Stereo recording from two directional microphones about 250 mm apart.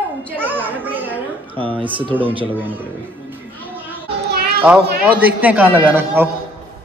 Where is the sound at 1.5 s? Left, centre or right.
Right.